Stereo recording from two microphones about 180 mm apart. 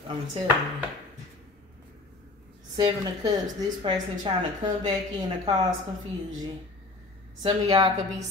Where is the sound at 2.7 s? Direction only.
20° right (ahead or behind).